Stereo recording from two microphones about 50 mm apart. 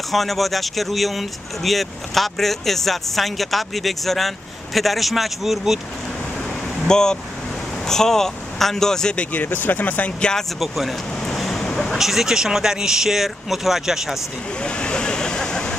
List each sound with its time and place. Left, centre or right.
0.1 s speech: centre
6.9 s speech: centre
9.1 s speech: left
9.4 s speech: left
10.6 s speech: centre
11.2 s vehicle: centre
11.6 s a sound: centre
11.9 s speech: centre
14.6 s vehicle: left